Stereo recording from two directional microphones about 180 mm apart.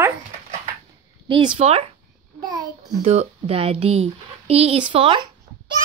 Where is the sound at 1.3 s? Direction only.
30° right (ahead or behind).